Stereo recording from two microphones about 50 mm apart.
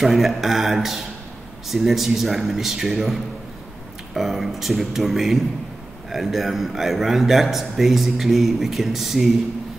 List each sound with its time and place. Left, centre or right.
0.0 s a man's voice: centre